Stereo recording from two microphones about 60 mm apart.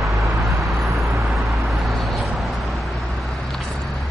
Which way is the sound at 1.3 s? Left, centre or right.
Centre.